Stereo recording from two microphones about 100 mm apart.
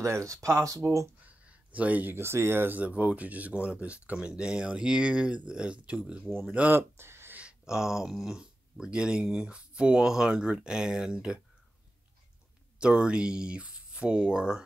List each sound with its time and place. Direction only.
0.0 s speech: 30° right (ahead or behind)
1.2 s speech: 15° right (ahead or behind)
6.8 s a sound: 25° right (ahead or behind)
7.3 s speech: 10° right (ahead or behind)
12.7 s speech: 10° right (ahead or behind)